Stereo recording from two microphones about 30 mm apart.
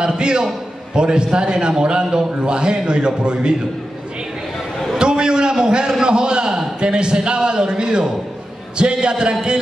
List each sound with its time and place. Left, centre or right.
0.0 s a man's voice: right
4.9 s a sound: right
6.8 s a man's voice: right